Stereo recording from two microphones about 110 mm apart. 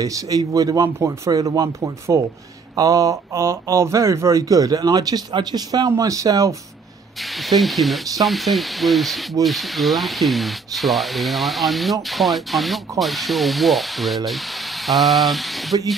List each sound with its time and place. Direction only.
0.0 s speech: 35° right (ahead or behind)
7.4 s speech: centre (ahead or behind)
15.7 s speech: 45° right (ahead or behind)